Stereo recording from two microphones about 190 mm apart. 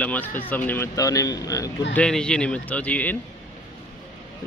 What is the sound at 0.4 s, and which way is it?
A man's voice, 10° left (ahead or behind).